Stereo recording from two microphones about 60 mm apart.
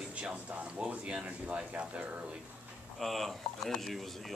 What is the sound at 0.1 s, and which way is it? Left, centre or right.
Speech, right.